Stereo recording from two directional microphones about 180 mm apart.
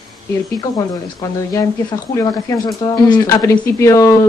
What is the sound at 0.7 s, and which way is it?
Speech, 20° left (ahead or behind).